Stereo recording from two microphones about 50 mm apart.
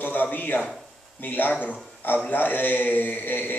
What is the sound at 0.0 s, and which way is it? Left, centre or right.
A man's voice, left.